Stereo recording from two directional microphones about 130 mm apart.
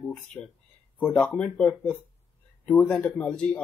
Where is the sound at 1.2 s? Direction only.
10° left (ahead or behind).